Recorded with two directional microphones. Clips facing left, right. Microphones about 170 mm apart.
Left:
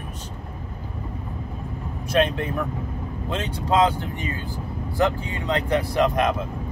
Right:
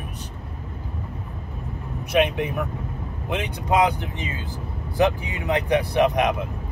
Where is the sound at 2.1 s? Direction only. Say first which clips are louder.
Right 1 dB; 15° right (ahead or behind).